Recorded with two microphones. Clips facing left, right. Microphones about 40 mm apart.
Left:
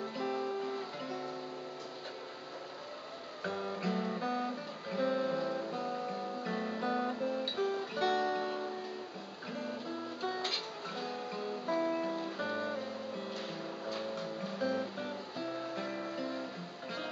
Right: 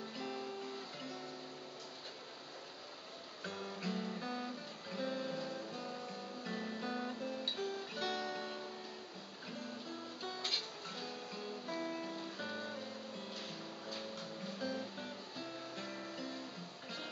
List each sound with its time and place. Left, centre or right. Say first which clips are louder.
0.2 s music: left 9 dB; centre
3.4 s guitar: left 7 dB; centre
9.5 s music: left 7 dB; centre